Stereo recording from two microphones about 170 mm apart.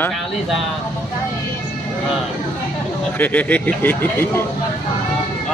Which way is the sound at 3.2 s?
10° left (ahead or behind).